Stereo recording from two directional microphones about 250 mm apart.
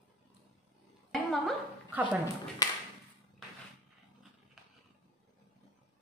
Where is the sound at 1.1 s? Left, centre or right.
Centre.